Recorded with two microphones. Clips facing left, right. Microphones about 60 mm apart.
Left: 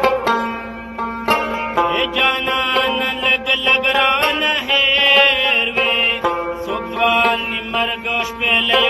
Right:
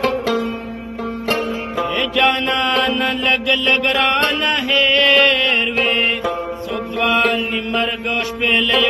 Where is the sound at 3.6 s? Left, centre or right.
Centre.